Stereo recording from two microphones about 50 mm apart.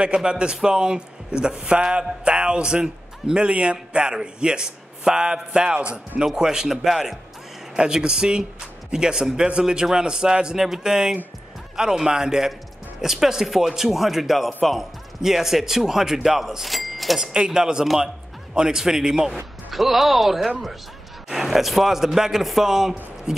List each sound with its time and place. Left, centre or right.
0.0 s a man's voice: centre
7.7 s a man's voice: centre
17.2 s a man's voice: centre